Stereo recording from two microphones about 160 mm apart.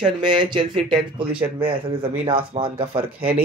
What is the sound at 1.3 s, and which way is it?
Speech, 10° right (ahead or behind).